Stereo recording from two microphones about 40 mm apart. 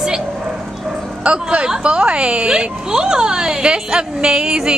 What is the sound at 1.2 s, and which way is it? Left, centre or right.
A woman's voice, right.